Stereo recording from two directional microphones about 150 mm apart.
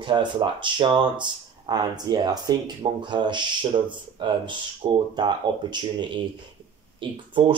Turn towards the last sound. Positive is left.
turn(degrees=-35)  # may be behind; listen again after turning